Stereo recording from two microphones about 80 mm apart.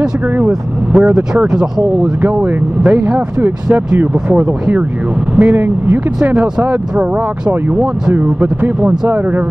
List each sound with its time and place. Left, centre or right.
0.0 s a man's voice: centre
8.1 s a man's voice: right